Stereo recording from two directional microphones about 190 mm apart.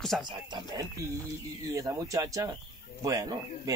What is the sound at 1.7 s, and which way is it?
Speech, 15° right (ahead or behind).